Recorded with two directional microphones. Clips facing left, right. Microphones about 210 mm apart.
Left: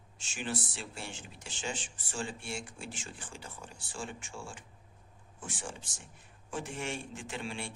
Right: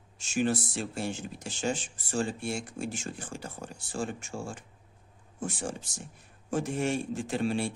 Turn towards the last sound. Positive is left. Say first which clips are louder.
# right 10 dB
turn(degrees=-40)  # may be behind; listen again after turning